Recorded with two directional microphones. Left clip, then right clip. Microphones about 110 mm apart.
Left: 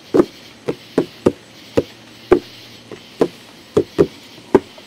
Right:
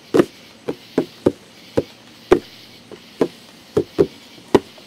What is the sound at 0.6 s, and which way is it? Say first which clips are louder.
Chop: left 3 dB; 5° left (ahead or behind).